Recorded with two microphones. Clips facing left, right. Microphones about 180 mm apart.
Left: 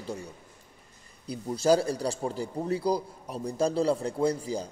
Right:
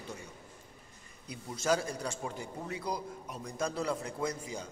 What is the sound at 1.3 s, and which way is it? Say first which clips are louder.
A man's voice: left 8 dB; 35° left (ahead or behind).